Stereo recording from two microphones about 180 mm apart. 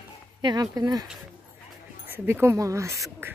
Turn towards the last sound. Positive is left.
turn(degrees=-15)  # may be behind; listen again after turning